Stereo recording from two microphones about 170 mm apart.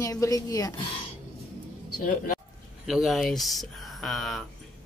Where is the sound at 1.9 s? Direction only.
55° left (ahead or behind).